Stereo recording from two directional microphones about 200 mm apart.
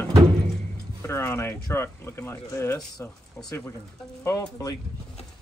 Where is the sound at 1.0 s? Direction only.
15° left (ahead or behind).